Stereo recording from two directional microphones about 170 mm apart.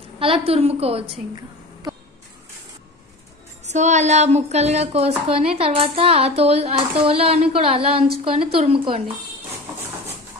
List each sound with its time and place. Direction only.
0.2 s a woman's voice: 35° right (ahead or behind)
3.6 s a woman's voice: 45° right (ahead or behind)